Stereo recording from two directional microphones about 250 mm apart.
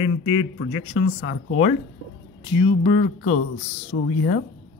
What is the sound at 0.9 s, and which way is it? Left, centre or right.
Speech, left.